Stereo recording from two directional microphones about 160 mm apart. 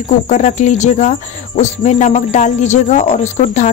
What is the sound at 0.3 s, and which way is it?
Speech, 45° left (ahead or behind).